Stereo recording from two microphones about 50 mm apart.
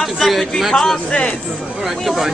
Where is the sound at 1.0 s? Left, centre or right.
Centre.